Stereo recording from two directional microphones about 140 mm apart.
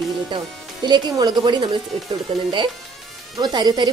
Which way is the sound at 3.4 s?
30° right (ahead or behind).